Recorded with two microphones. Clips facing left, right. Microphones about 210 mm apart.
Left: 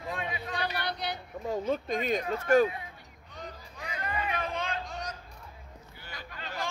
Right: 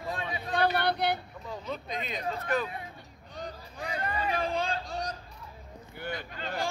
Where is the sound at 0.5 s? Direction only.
55° right (ahead or behind).